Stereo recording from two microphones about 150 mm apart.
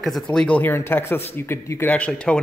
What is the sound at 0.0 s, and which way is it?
A man's voice, centre (ahead or behind).